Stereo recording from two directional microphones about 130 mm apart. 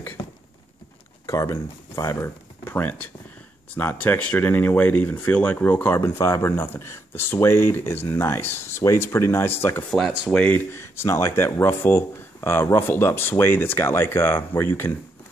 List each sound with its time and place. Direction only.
1.2 s speech: 25° left (ahead or behind)
9.8 s speech: centre (ahead or behind)
10.4 s speech: 15° left (ahead or behind)